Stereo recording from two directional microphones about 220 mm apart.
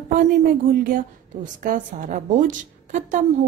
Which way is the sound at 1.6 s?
35° right (ahead or behind).